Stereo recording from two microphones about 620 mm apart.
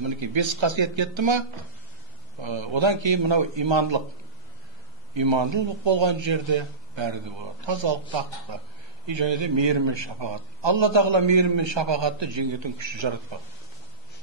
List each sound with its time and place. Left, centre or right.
0.0 s a man's voice: right
2.4 s a man's voice: right
5.1 s a man's voice: right